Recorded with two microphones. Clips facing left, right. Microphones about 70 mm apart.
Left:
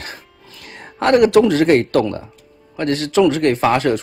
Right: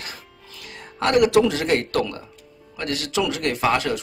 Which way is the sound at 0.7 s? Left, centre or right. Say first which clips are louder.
Left 7 dB; left.